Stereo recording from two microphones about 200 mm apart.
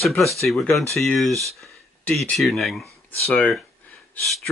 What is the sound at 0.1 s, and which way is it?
Speech, centre (ahead or behind).